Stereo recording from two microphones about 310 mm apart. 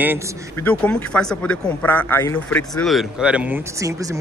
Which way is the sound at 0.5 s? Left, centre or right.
Centre.